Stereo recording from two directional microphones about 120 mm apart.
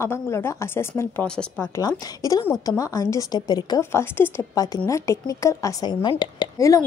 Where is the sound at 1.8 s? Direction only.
30° left (ahead or behind).